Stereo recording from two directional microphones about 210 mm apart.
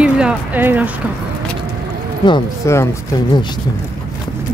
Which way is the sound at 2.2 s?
15° left (ahead or behind).